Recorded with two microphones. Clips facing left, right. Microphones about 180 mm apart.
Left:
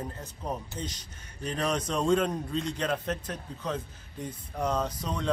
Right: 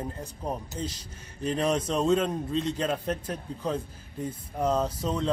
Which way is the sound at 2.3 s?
30° right (ahead or behind).